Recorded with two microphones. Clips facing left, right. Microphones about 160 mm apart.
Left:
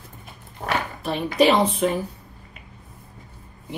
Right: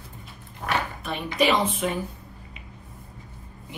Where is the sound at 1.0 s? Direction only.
35° left (ahead or behind).